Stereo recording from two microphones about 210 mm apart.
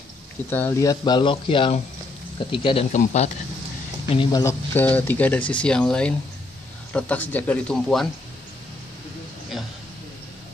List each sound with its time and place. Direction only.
0.5 s speech: 10° left (ahead or behind); by 3.3 s 35° left (ahead or behind)
4.1 s speech: 20° left (ahead or behind); by 8.1 s 5° left (ahead or behind)